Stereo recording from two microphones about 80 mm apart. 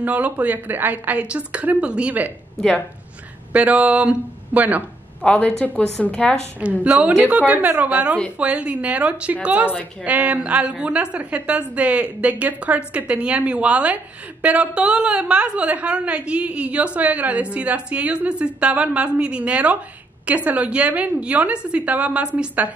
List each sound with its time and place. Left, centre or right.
0.0 s a woman's voice: centre
3.5 s a woman's voice: centre
5.2 s a woman's voice: centre
6.6 s a woman's voice: centre